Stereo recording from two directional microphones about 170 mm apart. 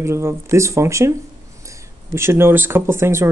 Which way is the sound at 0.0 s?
15° right (ahead or behind).